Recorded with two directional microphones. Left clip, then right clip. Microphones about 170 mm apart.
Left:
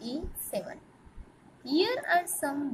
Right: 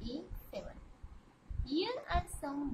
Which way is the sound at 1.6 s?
20° left (ahead or behind).